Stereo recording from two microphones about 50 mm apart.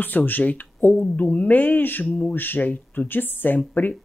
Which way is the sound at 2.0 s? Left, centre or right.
Left.